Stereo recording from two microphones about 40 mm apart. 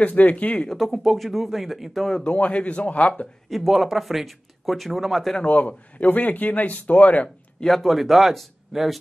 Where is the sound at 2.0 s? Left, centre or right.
Left.